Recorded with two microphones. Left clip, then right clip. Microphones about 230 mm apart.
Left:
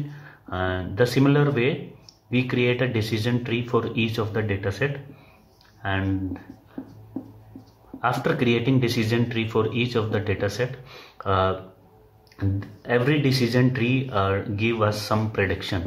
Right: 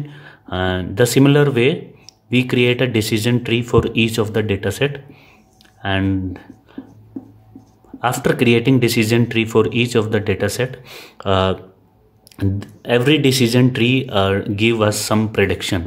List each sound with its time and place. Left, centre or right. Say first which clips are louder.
0.1 s speech: right 6 dB; right
8.0 s speech: right 6 dB; right